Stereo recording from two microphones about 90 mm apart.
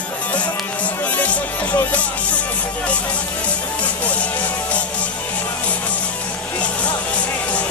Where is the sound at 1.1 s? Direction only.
15° left (ahead or behind).